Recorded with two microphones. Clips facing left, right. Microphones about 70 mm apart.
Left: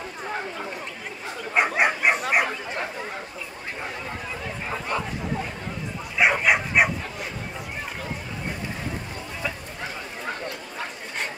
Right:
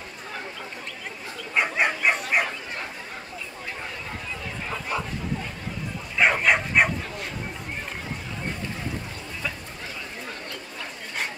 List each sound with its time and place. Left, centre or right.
1.5 s bow-wow: left
4.9 s a sound: centre
6.1 s bow-wow: centre